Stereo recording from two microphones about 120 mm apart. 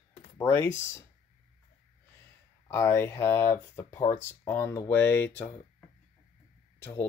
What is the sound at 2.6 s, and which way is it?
Speech, 20° left (ahead or behind).